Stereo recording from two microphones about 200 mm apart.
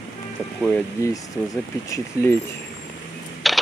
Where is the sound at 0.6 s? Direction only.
5° left (ahead or behind).